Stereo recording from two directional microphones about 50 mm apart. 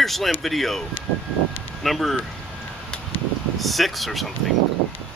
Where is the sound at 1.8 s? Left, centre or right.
Centre.